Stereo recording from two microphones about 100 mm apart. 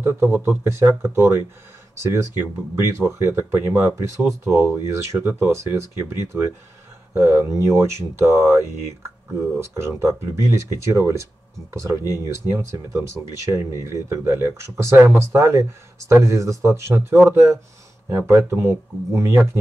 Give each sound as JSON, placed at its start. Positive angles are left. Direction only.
{"t": 0.5, "sound": "speech", "side_deg": -30}
{"t": 12.0, "sound": "speech", "side_deg": 35}
{"t": 12.4, "sound": "speech", "side_deg": -25}